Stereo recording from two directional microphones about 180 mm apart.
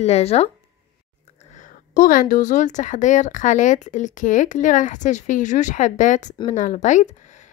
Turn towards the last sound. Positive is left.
turn(degrees=40)  # may be behind; listen again after turning